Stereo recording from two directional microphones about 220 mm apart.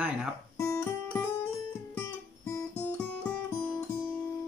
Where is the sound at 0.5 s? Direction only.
15° left (ahead or behind).